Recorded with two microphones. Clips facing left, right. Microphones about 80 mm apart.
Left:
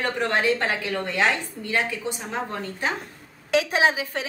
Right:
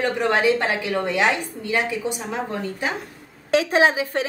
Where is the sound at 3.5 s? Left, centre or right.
Right.